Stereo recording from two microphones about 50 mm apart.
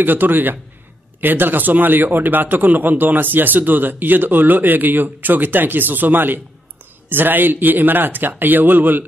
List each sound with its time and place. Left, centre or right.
0.0 s a man's voice: right